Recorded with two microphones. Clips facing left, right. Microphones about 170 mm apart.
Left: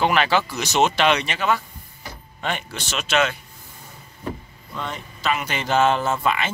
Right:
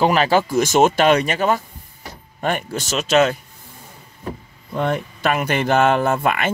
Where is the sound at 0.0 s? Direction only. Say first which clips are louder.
Right 4 dB; 40° right (ahead or behind).